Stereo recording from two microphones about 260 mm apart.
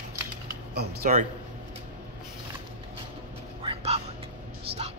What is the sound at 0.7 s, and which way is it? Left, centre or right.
Speech, right.